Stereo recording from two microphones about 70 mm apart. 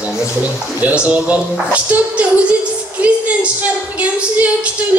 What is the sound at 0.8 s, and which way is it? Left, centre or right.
A woman's voice, centre.